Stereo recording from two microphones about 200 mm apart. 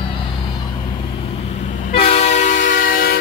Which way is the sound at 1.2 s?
30° left (ahead or behind).